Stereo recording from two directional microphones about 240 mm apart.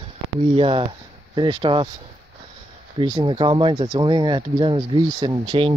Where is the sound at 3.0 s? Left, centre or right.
Centre.